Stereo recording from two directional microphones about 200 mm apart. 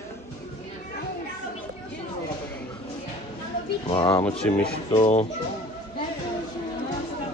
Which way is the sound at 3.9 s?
25° left (ahead or behind).